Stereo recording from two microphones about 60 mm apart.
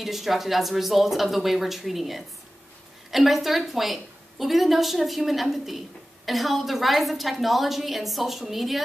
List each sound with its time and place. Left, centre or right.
0.0 s a woman's voice: centre